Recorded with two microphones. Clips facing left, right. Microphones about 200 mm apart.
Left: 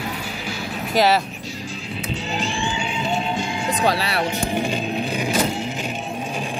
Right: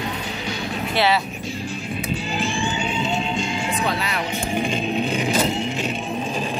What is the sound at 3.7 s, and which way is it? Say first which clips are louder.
Speech: left 7 dB; 35° left (ahead or behind).